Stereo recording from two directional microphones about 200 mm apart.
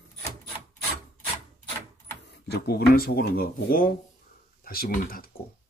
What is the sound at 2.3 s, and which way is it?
Speech, 55° left (ahead or behind).